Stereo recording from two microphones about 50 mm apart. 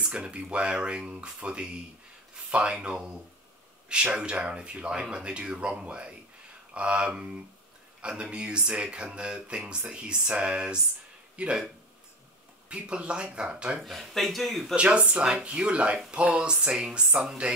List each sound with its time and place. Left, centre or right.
0.0 s speech: right
4.1 s speech: centre
12.6 s speech: right
13.8 s speech: centre
14.8 s speech: right